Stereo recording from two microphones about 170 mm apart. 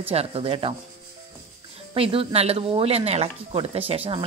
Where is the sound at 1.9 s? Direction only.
35° right (ahead or behind).